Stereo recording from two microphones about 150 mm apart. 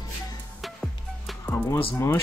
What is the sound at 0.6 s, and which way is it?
Music, centre (ahead or behind).